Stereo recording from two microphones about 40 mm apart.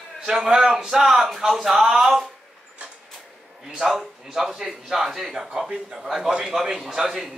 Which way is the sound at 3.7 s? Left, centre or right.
Centre.